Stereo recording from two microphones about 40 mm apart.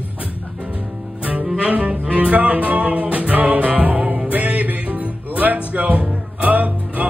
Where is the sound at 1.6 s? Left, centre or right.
Right.